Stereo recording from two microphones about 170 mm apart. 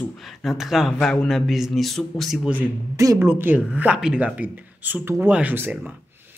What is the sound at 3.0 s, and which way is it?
A woman's voice, 15° right (ahead or behind).